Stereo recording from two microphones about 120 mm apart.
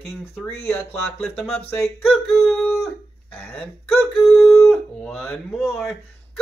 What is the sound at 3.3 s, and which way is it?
Speech, 15° left (ahead or behind).